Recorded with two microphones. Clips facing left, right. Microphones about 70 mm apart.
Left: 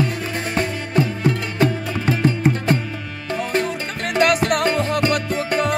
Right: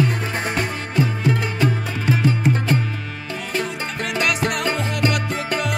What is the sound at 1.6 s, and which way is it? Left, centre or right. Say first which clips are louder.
Music: left 2 dB; left.